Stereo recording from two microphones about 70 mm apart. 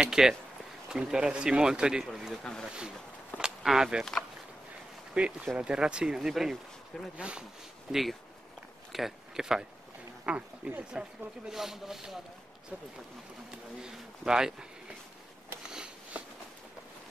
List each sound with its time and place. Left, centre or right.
0.0 s speech: centre
3.3 s speech: centre
5.1 s speech: centre
7.2 s speech: centre
7.9 s speech: centre
13.7 s speech: centre
15.7 s a sound: centre